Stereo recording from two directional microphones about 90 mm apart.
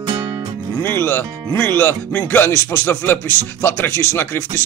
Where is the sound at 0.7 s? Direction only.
25° left (ahead or behind).